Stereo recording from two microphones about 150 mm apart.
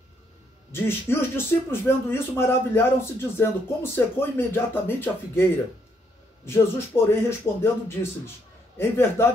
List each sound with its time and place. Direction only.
0.7 s speech: 15° left (ahead or behind)
6.9 s speech: 20° left (ahead or behind)